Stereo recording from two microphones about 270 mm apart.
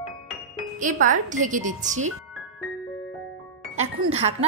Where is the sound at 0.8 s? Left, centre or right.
Right.